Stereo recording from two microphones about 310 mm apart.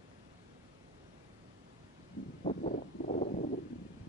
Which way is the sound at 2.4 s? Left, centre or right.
Left.